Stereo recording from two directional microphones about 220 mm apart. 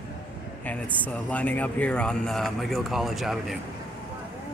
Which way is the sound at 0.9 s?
5° left (ahead or behind).